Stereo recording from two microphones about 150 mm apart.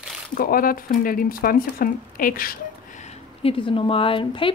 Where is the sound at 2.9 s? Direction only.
50° left (ahead or behind).